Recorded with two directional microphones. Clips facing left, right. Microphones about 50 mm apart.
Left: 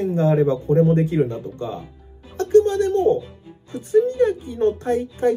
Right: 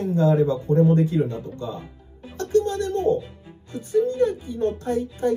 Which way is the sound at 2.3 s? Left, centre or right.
Left.